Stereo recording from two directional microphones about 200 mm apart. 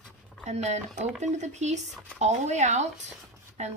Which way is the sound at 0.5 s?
35° right (ahead or behind).